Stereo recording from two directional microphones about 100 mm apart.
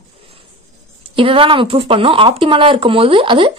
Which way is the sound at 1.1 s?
60° right (ahead or behind).